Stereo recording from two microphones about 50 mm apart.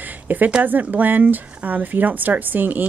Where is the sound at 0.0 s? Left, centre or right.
Right.